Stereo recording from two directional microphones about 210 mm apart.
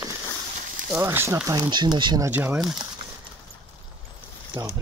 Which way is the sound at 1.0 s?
10° right (ahead or behind).